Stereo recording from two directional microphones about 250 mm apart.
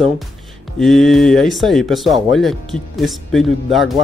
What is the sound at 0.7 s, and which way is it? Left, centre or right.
Speech, centre.